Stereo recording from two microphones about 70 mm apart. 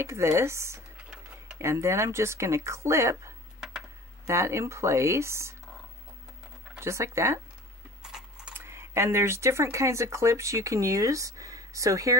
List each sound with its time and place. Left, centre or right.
0.0 s speech: right
6.8 s speech: right
8.0 s a sound: centre
8.5 s speech: right